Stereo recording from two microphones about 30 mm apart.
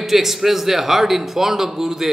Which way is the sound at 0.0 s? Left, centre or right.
Centre.